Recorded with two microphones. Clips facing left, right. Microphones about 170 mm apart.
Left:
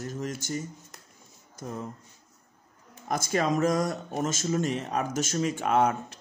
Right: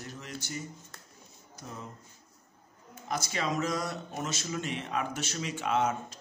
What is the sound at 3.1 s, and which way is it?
Speech, 50° left (ahead or behind).